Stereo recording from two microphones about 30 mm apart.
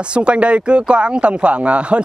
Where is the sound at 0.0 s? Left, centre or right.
Right.